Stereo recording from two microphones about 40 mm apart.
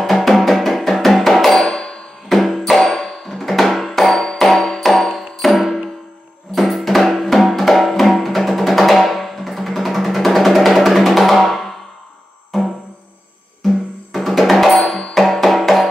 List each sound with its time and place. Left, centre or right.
0.0 s music: centre
1.6 s music: centre
2.2 s music: centre